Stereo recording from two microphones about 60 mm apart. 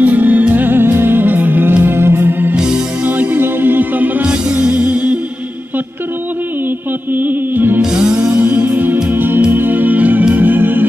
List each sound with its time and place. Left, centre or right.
0.0 s music: right
7.2 s music: right
7.8 s music: centre
8.4 s music: right